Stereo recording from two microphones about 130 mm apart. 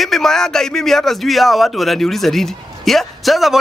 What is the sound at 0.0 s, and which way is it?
A man's voice, 5° left (ahead or behind).